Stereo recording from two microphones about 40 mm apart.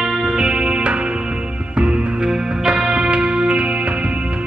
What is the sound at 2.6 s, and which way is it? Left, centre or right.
Music, right.